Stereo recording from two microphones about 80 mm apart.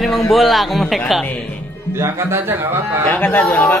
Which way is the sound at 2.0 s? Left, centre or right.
Right.